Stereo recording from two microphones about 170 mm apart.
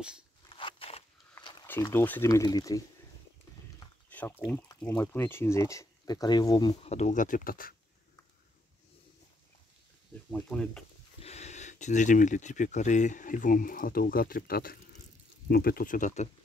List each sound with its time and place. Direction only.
0.5 s a sound: 30° left (ahead or behind)
1.7 s speech: 15° left (ahead or behind)
4.1 s a sound: 10° left (ahead or behind)
4.7 s speech: 10° left (ahead or behind)
6.9 s speech: 45° left (ahead or behind)
10.3 s speech: 5° left (ahead or behind)
11.1 s speech: 40° left (ahead or behind)